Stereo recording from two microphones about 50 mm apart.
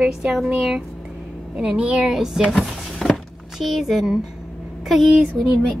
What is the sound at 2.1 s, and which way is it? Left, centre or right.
Speech, centre.